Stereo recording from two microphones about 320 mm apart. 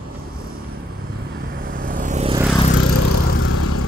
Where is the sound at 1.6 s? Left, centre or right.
Right.